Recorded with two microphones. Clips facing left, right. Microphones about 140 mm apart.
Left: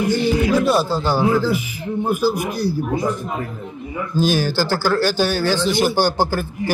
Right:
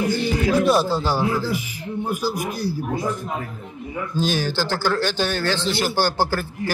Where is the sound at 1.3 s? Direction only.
80° left.